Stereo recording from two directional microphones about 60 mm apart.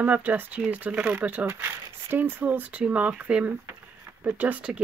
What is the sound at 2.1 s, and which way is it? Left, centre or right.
Speech, right.